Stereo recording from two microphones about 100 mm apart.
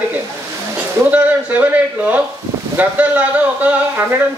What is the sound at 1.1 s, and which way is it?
A man's voice, 15° right (ahead or behind).